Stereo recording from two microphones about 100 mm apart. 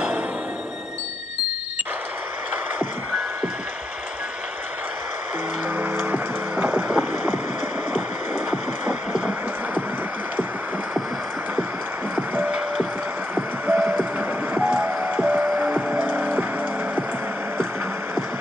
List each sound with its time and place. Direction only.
5.8 s vehicle: 15° right (ahead or behind)
8.5 s a sound: 5° right (ahead or behind)
12.4 s music: 10° right (ahead or behind)